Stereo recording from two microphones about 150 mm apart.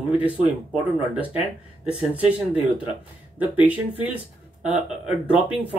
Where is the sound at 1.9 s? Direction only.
10° right (ahead or behind).